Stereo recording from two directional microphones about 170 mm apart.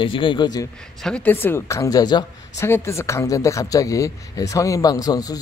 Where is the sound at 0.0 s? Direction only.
30° left (ahead or behind).